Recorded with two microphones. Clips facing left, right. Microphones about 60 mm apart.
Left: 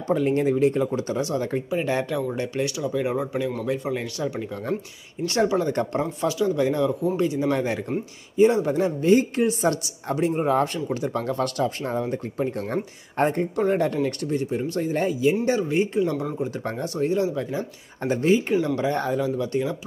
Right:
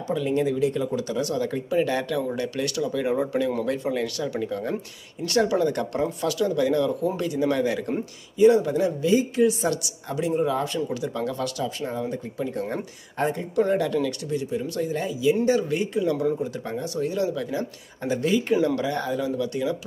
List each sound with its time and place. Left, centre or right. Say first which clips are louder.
0.1 s speech: left 3 dB; left; by 3.9 s centre
3.9 s speech: right 1 dB; left
13.7 s speech: left 1 dB; left
16.6 s speech: left 2 dB; left